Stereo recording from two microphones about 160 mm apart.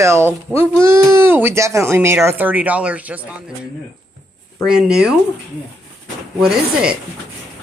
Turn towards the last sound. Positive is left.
turn(degrees=-5)  # may be behind; listen again after turning